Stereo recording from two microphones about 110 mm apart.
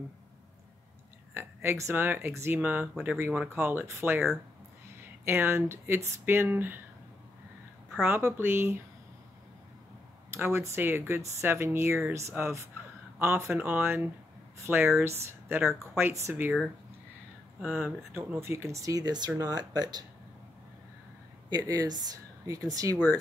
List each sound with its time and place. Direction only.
1.3 s speech: 20° right (ahead or behind)
5.2 s speech: 20° right (ahead or behind)
8.0 s speech: 20° right (ahead or behind)
10.3 s speech: 25° right (ahead or behind)
17.6 s speech: 20° right (ahead or behind); by 20.1 s 40° right (ahead or behind)
21.5 s speech: 35° right (ahead or behind)